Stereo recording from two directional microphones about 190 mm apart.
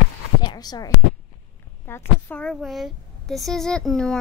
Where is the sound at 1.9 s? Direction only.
10° left (ahead or behind).